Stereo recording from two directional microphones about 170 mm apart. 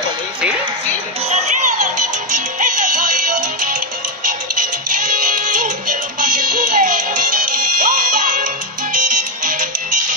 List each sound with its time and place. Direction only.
1.3 s music: 45° right (ahead or behind)
4.9 s music: 50° right (ahead or behind)